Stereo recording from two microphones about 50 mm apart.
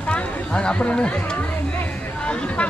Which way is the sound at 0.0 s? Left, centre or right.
Left.